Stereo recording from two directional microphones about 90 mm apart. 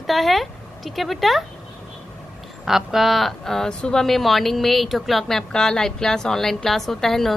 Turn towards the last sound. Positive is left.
turn(degrees=5)  # may be behind; listen again after turning